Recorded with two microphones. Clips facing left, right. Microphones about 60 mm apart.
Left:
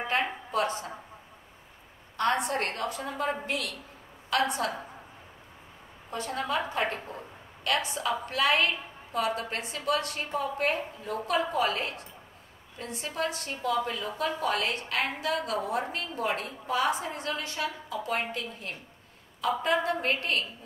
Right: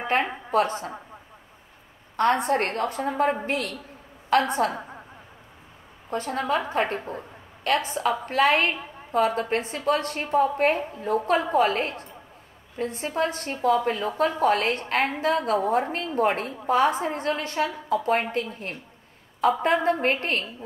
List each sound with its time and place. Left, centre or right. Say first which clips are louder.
0.1 s a woman's voice: right 7 dB; right
2.1 s a woman's voice: right 6 dB; right
6.0 s a woman's voice: right 5 dB; right